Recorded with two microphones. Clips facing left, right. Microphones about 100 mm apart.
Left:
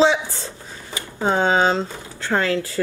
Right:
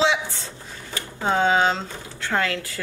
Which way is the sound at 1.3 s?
35° left (ahead or behind).